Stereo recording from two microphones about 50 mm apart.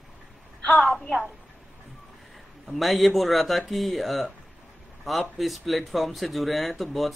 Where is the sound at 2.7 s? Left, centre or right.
Centre.